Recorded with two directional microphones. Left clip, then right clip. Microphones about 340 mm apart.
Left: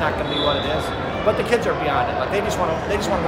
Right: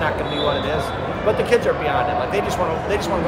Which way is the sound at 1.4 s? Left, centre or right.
Centre.